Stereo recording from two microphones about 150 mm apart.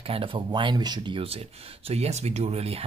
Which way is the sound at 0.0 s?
40° right (ahead or behind).